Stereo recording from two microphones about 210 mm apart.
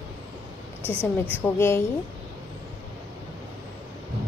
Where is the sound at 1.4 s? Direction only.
10° left (ahead or behind).